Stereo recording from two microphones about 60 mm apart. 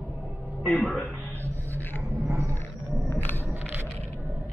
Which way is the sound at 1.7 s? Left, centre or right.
Left.